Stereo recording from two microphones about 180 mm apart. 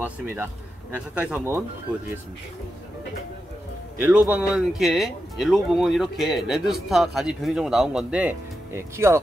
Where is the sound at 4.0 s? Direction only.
10° right (ahead or behind).